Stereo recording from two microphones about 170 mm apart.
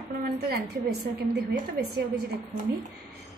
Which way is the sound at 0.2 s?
70° right (ahead or behind).